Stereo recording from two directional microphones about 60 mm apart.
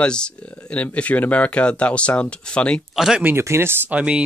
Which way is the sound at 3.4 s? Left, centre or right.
Right.